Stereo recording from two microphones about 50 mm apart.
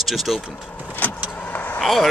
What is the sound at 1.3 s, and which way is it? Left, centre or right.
Vehicle, left.